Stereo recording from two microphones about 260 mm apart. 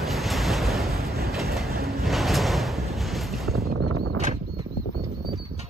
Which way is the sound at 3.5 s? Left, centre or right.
Right.